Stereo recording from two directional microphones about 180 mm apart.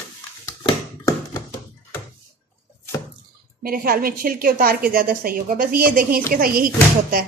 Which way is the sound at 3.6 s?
55° right (ahead or behind).